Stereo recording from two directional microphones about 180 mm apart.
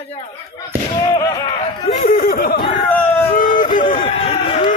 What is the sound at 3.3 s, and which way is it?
Run, 45° left (ahead or behind).